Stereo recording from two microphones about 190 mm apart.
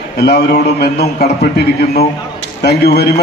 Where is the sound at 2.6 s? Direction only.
60° left (ahead or behind).